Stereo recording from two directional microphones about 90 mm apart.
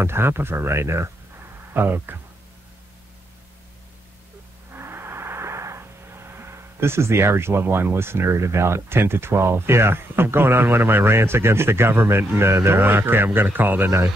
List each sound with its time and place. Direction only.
0.0 s speech: 25° right (ahead or behind)
4.7 s vehicle: 25° right (ahead or behind)